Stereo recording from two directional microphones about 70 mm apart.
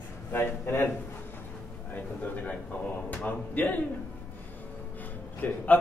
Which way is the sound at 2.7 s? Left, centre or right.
Left.